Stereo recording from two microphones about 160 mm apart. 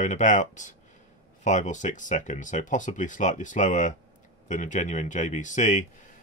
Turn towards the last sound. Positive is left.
turn(degrees=50)  # may be behind; listen again after turning